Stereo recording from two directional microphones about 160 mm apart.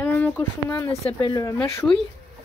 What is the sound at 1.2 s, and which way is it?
Speech, 25° left (ahead or behind).